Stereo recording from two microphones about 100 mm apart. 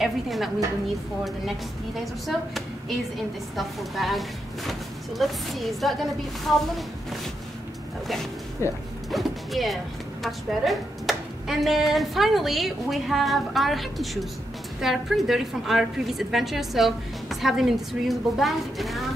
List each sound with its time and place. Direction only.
0.0 s speech: centre (ahead or behind)
2.2 s a woman's voice: centre (ahead or behind)
8.6 s speech: 30° left (ahead or behind)
9.1 s a woman's voice: centre (ahead or behind)